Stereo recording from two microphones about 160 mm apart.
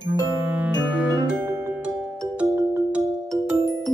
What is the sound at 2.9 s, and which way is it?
Music, 5° right (ahead or behind).